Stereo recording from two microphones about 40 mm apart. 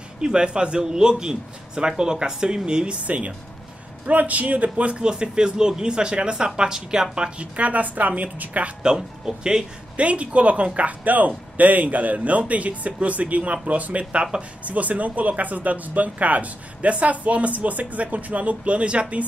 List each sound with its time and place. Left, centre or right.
0.2 s speech: right
3.1 s speech: right
4.7 s speech: right
8.8 s speech: centre
9.9 s speech: right